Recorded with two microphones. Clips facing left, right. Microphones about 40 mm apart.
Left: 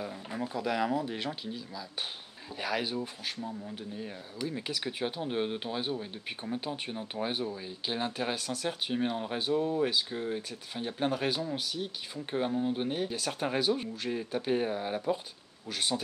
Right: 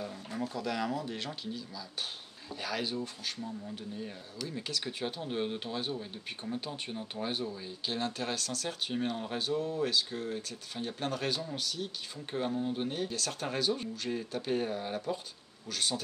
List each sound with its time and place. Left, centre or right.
0.0 s speech: centre
2.6 s speech: centre